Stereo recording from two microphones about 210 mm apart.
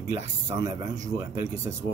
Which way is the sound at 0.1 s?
15° right (ahead or behind).